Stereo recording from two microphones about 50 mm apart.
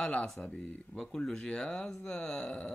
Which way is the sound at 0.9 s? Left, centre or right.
Centre.